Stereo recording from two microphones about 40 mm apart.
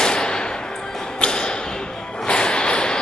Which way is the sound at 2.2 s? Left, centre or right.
Left.